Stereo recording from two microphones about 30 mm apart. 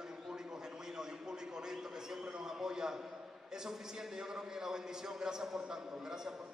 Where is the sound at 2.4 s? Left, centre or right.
Right.